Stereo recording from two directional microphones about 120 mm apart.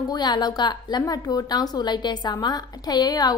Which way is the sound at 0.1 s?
35° left (ahead or behind).